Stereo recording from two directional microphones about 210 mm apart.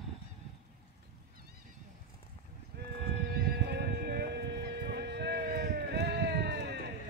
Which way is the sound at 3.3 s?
45° right (ahead or behind).